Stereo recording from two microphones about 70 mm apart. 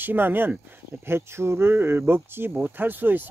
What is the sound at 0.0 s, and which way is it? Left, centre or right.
Speech, right.